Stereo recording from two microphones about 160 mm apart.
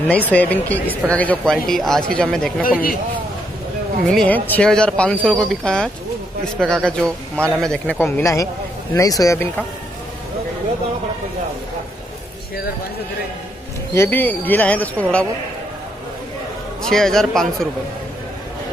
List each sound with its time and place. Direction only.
0.1 s speech: 10° left (ahead or behind)
4.1 s speech: 5° left (ahead or behind)
13.9 s speech: 15° left (ahead or behind)
16.8 s speech: 5° left (ahead or behind)